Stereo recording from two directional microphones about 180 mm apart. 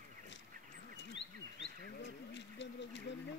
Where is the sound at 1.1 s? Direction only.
85° left.